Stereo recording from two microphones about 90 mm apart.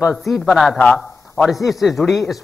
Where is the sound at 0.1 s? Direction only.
Centre (ahead or behind).